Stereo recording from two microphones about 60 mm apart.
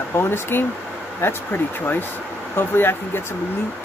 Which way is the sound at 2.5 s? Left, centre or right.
Left.